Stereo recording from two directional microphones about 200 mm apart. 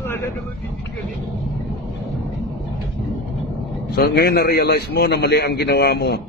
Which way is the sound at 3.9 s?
50° left (ahead or behind).